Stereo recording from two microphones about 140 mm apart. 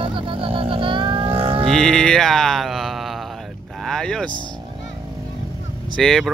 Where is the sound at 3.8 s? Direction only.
5° left (ahead or behind).